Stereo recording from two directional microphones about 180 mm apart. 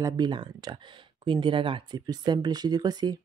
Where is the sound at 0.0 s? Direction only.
25° right (ahead or behind).